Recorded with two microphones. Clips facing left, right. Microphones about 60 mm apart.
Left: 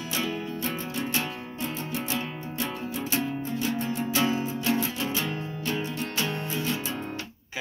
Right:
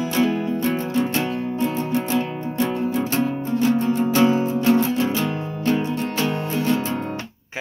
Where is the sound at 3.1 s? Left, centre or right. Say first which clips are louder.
Right 8 dB; right.